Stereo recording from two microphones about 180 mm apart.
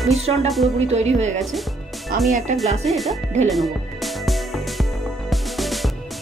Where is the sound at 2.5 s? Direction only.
40° right (ahead or behind).